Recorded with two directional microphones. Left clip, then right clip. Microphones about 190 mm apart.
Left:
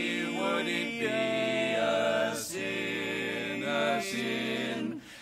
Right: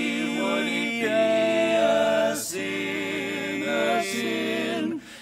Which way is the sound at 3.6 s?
40° left (ahead or behind).